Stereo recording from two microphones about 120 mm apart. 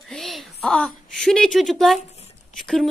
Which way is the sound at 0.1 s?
Centre (ahead or behind).